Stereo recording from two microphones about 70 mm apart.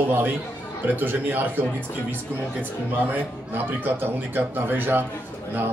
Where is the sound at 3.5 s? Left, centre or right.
Right.